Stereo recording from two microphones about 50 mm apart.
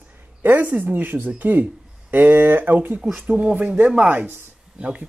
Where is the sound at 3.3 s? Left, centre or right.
Right.